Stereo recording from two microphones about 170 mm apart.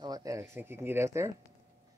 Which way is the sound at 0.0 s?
20° right (ahead or behind).